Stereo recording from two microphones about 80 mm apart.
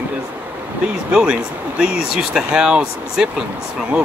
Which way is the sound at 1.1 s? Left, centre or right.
Centre.